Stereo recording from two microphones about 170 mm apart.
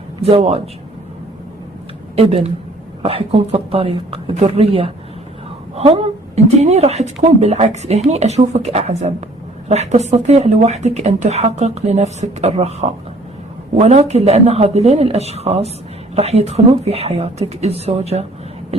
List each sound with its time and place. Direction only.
0.2 s speech: 35° right (ahead or behind)
2.1 s speech: 40° right (ahead or behind)
13.7 s speech: 40° right (ahead or behind)